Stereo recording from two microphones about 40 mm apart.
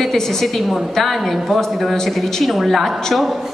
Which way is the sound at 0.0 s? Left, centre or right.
Centre.